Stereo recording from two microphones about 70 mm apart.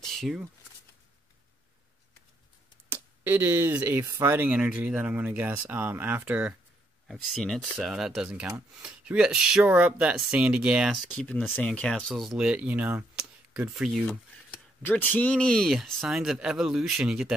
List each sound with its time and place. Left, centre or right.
0.0 s a sound: centre
2.9 s speech: right
4.5 s speech: centre
7.1 s speech: centre
9.7 s speech: centre
11.1 s speech: centre
12.3 s speech: centre
13.6 s speech: centre
14.9 s speech: left; by 17.3 s centre